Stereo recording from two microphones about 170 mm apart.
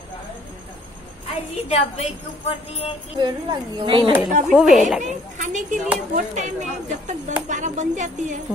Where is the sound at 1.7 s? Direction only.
40° left (ahead or behind).